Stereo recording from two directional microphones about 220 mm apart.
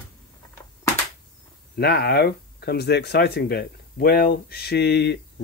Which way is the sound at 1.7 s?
45° left (ahead or behind).